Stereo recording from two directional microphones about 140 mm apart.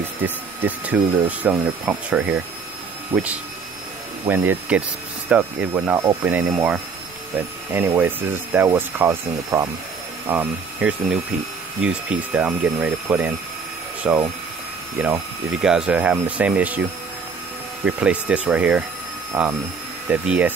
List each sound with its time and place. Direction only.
0.2 s speech: 10° right (ahead or behind)
4.3 s speech: 10° right (ahead or behind)
17.8 s speech: 10° right (ahead or behind)